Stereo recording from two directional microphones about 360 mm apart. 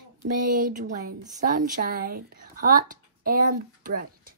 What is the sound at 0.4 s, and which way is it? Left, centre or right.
A woman's voice, right.